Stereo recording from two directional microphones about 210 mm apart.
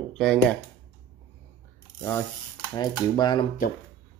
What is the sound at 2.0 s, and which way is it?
Speech, 10° left (ahead or behind).